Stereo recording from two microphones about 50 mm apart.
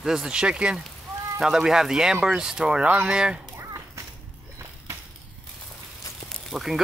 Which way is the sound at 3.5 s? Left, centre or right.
Right.